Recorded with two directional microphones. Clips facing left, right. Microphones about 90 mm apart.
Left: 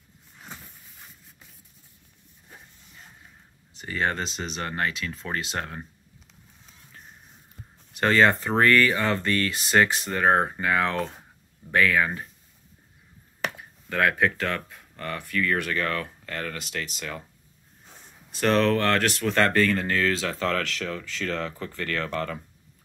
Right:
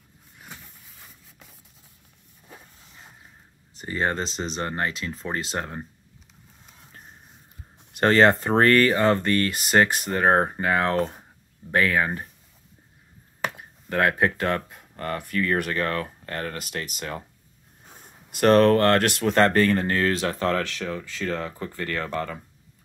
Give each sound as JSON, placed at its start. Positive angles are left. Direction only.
{"t": 3.7, "sound": "speech", "side_deg": -30}
{"t": 8.0, "sound": "speech", "side_deg": -40}
{"t": 9.5, "sound": "speech", "side_deg": -50}
{"t": 13.6, "sound": "a sound", "side_deg": -35}
{"t": 14.3, "sound": "speech", "side_deg": -35}
{"t": 18.0, "sound": "speech", "side_deg": -50}
{"t": 19.3, "sound": "speech", "side_deg": -35}
{"t": 20.7, "sound": "speech", "side_deg": -20}